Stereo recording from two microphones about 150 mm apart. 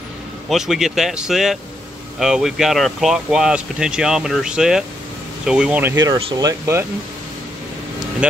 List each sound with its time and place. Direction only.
0.5 s speech: centre (ahead or behind)
6.3 s speech: 20° right (ahead or behind)
8.2 s speech: 5° right (ahead or behind)